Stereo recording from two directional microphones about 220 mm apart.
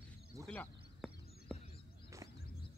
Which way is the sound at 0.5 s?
5° left (ahead or behind).